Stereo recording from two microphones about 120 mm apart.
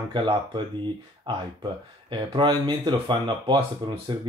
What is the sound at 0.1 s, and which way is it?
Speech, 40° right (ahead or behind).